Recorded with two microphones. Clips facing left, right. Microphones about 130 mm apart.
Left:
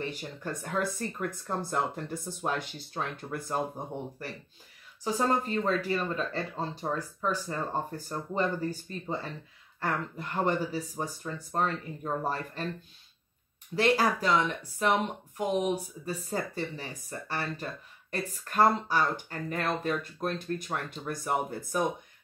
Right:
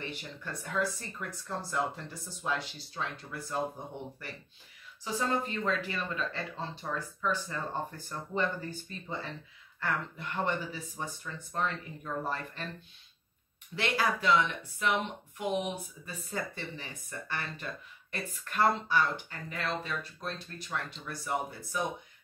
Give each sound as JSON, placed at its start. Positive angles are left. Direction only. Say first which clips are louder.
{"t": 0.0, "sound": "speech", "louder": "left 5 dB", "side_deg": 40}
{"t": 13.7, "sound": "speech", "louder": "left 5 dB", "side_deg": 40}